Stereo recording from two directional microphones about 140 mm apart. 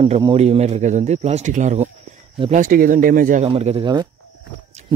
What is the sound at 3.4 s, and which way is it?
Speech, 45° right (ahead or behind).